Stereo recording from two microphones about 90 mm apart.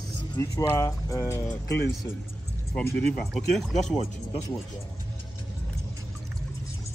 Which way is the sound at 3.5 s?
Centre (ahead or behind).